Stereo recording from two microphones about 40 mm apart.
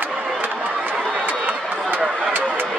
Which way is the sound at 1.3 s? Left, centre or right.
Right.